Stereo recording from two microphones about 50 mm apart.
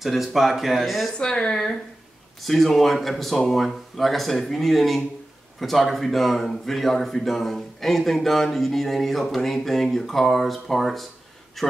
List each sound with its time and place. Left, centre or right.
0.0 s speech: centre
1.1 s speech: centre
2.4 s speech: centre